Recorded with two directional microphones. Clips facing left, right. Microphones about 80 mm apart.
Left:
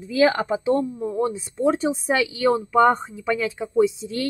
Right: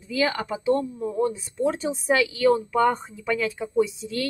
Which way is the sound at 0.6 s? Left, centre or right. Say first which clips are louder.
Right 2 dB; left.